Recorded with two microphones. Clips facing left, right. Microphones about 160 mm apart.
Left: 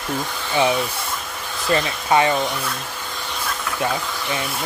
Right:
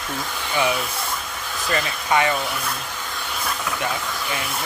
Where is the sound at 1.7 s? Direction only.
30° left (ahead or behind).